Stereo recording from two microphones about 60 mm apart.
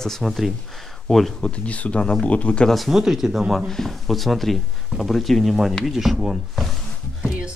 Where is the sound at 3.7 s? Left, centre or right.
Centre.